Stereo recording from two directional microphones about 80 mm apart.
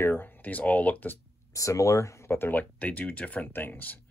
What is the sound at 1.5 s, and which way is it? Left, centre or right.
Speech, left.